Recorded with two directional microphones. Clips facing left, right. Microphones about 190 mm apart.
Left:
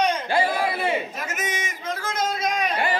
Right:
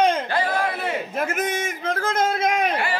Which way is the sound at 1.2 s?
55° right (ahead or behind).